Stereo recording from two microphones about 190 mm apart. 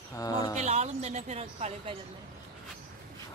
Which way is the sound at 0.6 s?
35° right (ahead or behind).